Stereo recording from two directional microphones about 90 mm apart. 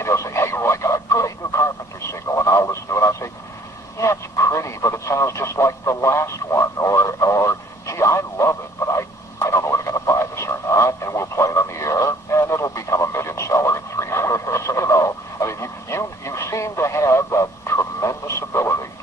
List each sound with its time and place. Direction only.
0.0 s radio: 30° left (ahead or behind)